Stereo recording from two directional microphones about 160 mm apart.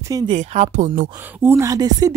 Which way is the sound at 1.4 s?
15° right (ahead or behind).